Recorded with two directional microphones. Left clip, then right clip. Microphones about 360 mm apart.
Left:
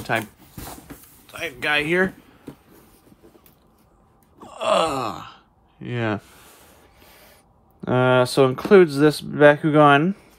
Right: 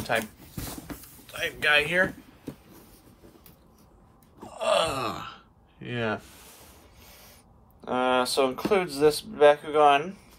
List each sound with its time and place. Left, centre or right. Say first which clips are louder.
0.0 s dog: left 3 dB; centre
0.8 s a sound: right 1 dB; centre
1.2 s speech: even; centre
4.5 s groan: left 5 dB; centre
7.8 s speech: left 6 dB; left